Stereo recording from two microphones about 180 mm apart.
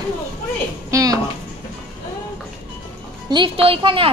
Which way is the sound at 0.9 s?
20° right (ahead or behind).